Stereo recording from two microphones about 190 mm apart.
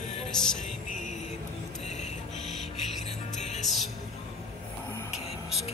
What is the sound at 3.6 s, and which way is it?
Music, centre (ahead or behind).